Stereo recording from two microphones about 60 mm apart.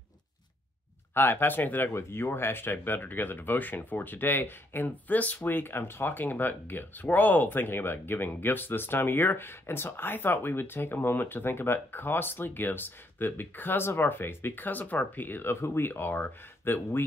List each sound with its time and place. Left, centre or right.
1.1 s speech: left
15.5 s speech: left